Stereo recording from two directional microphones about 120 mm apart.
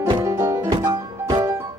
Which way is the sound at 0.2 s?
25° right (ahead or behind).